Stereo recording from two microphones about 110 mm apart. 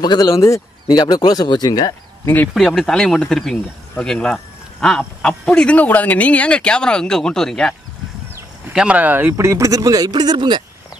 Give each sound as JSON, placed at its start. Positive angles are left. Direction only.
{"t": 0.0, "sound": "speech", "side_deg": 40}
{"t": 2.2, "sound": "speech", "side_deg": 15}
{"t": 2.5, "sound": "speech", "side_deg": 5}
{"t": 8.7, "sound": "speech", "side_deg": -10}